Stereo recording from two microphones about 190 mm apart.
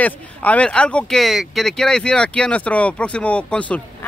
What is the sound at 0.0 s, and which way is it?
Speech, 10° left (ahead or behind).